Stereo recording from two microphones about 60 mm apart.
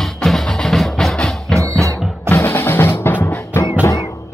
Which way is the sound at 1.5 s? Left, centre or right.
Centre.